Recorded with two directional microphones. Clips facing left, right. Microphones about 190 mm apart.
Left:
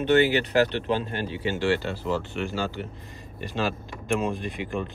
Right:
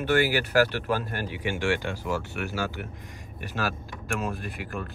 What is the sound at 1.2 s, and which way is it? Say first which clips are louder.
Speech: left 2 dB; 15° right (ahead or behind).